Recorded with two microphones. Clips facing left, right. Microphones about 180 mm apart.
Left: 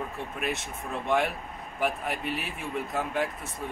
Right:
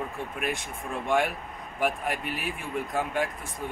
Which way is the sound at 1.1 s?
Centre (ahead or behind).